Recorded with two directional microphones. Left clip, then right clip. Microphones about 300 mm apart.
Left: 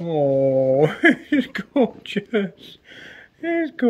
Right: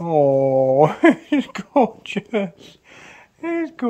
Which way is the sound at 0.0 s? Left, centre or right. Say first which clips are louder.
Right 3 dB; right.